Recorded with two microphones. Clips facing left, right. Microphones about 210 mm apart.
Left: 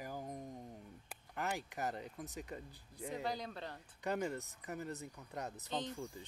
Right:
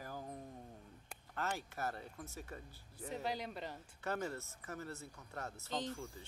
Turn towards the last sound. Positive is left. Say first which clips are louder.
# even
turn(degrees=15)  # may be behind; listen again after turning